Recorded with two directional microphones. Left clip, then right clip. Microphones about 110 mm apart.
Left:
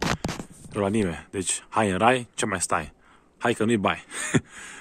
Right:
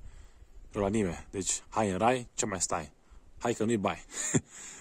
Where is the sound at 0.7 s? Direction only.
15° right (ahead or behind).